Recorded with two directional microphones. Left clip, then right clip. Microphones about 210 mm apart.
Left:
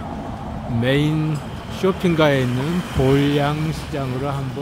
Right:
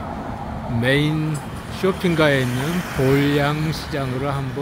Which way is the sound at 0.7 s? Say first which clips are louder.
Even; 10° left (ahead or behind).